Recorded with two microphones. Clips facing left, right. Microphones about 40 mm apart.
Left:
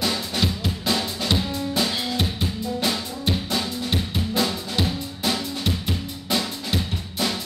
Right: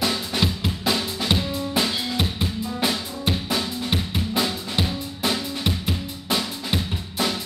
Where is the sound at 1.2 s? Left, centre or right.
Right.